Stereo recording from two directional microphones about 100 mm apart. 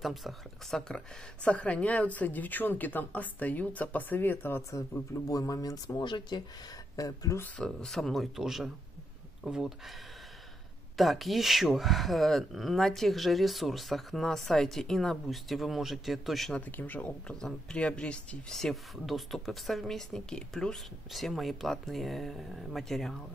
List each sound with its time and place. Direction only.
0.0 s speech: centre (ahead or behind); by 4.6 s 20° left (ahead or behind)
5.3 s speech: 35° left (ahead or behind)
6.0 s speech: 50° left (ahead or behind)
7.0 s speech: 35° left (ahead or behind)
7.5 s speech: 5° left (ahead or behind)
11.0 s speech: centre (ahead or behind)
16.5 s speech: 15° left (ahead or behind)